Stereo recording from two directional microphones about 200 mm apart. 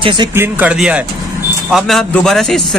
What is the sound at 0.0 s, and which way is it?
Speech, 25° right (ahead or behind).